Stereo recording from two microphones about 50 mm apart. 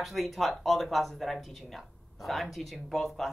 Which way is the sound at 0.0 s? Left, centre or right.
Centre.